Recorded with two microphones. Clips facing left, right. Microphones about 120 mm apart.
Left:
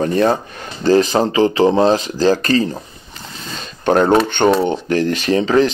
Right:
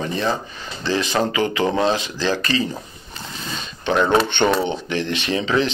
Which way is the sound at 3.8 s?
45° left (ahead or behind).